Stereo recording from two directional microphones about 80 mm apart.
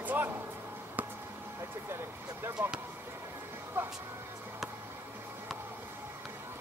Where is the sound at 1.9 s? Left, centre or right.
Right.